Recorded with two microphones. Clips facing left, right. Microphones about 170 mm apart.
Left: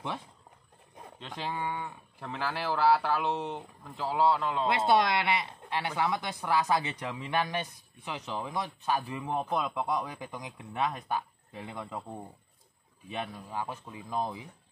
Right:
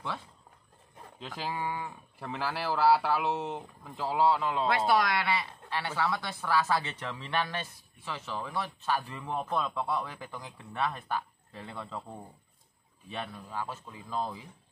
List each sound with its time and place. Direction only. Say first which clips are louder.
1.2 s speech: even; centre (ahead or behind)
4.6 s speech: left 2 dB; 20° left (ahead or behind)
13.1 s speech: left 2 dB; 15° left (ahead or behind)